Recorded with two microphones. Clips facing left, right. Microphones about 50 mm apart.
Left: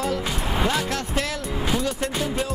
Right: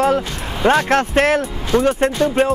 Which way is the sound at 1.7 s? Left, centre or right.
Right.